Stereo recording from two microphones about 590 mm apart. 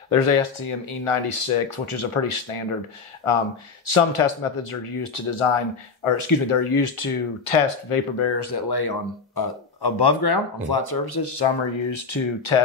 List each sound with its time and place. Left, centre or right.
0.1 s speech: left
8.4 s speech: left